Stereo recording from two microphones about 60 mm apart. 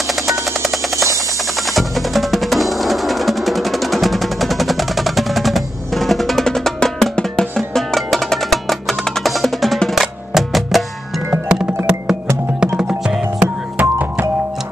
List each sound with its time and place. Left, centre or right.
0.1 s a sound: centre
1.7 s music: centre
11.4 s music: centre
13.7 s music: right